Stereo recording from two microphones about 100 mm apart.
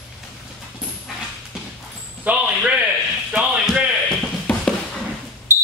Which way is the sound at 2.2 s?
10° right (ahead or behind).